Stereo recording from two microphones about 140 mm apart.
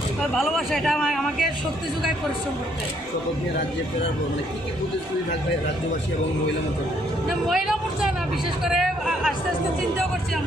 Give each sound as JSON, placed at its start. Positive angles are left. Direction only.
{"t": 0.3, "sound": "a man's voice", "side_deg": 0}
{"t": 7.2, "sound": "a man's voice", "side_deg": 0}